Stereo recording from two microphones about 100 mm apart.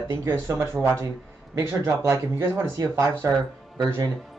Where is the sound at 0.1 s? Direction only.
30° right (ahead or behind).